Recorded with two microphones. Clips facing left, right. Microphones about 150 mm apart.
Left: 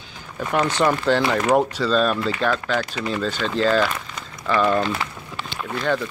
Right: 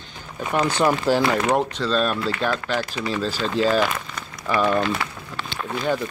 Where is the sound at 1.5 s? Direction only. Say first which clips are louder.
Left 3 dB; 5° left (ahead or behind).